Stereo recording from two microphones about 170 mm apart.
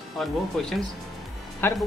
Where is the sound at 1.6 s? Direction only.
15° left (ahead or behind).